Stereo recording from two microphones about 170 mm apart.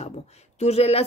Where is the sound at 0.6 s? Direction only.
40° left (ahead or behind).